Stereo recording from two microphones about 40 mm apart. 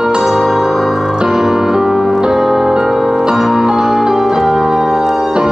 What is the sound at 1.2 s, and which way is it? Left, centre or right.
Keyboard, centre.